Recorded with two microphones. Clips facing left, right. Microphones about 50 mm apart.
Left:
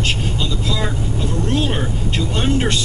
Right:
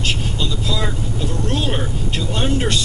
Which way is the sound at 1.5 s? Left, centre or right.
Left.